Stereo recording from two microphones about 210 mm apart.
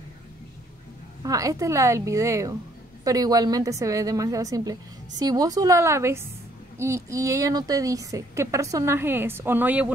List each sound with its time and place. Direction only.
1.2 s a woman's voice: 15° right (ahead or behind)